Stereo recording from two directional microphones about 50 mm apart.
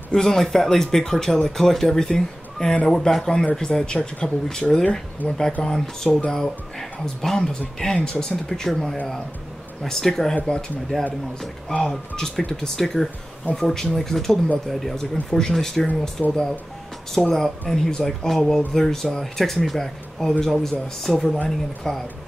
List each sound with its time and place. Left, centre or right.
0.1 s speech: centre
5.2 s speech: left
5.6 s speech: centre
16.2 s speech: centre
17.3 s speech: centre